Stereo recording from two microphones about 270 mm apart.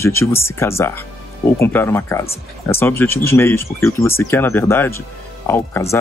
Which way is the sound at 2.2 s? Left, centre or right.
Left.